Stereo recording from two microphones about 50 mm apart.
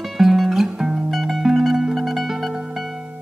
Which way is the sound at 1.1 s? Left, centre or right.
Centre.